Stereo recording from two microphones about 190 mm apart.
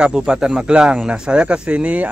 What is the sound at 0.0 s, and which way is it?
Speech, 5° right (ahead or behind).